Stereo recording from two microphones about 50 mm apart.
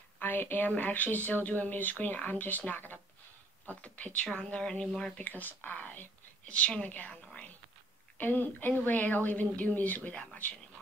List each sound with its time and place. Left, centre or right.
0.2 s speech: left
3.8 s a woman's voice: left; by 5.2 s centre
5.2 s speech: left
6.4 s a woman's voice: left
8.2 s speech: left